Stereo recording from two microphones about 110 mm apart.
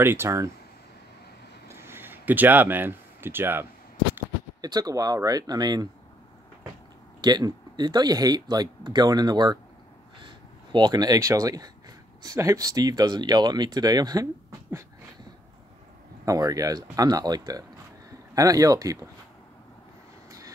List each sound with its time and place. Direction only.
0.0 s speech: 20° right (ahead or behind)
1.7 s a sound: 20° right (ahead or behind)
4.6 s speech: 35° right (ahead or behind)
7.2 s speech: 40° right (ahead or behind)
16.3 s speech: 30° right (ahead or behind)
20.2 s vehicle: 30° right (ahead or behind)